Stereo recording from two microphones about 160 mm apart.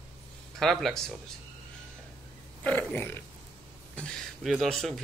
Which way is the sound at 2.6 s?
10° left (ahead or behind).